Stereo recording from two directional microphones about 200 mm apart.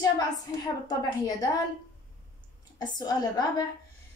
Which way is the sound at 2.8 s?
20° left (ahead or behind).